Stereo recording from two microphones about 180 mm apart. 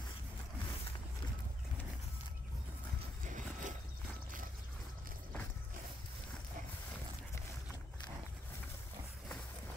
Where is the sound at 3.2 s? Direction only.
45° right (ahead or behind).